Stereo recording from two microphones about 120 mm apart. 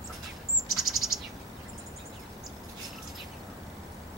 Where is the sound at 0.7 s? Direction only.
Centre (ahead or behind).